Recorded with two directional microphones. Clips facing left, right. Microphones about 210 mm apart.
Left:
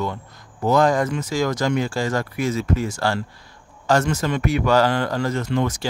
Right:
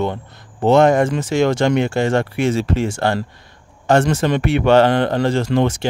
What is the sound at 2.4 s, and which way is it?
Speech, 75° right (ahead or behind).